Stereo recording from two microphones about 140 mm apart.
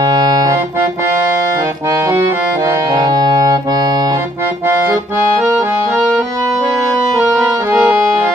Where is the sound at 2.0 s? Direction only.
20° right (ahead or behind).